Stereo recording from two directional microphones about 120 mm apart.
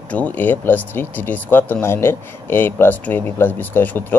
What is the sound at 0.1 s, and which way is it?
Speech, 15° left (ahead or behind).